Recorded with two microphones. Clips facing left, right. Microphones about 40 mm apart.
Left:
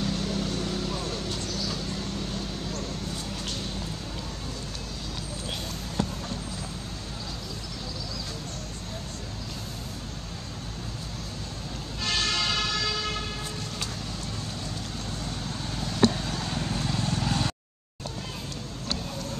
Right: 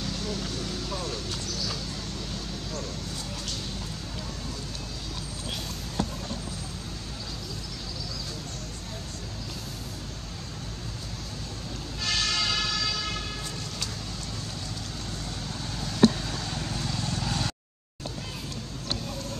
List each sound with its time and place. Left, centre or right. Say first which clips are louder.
0.0 s vehicle: left 4 dB; centre
12.0 s vehicle: left 1 dB; centre
15.8 s vehicle: right 2 dB; centre